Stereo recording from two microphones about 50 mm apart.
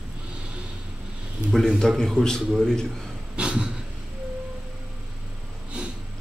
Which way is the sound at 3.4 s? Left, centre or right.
Centre.